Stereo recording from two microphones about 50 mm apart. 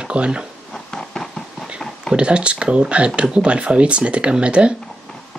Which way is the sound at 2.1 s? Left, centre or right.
Right.